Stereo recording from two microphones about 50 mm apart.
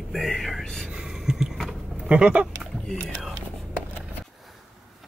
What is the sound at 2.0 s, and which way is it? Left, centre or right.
Speech, right.